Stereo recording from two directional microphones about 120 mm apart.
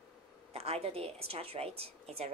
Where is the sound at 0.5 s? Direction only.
60° right (ahead or behind).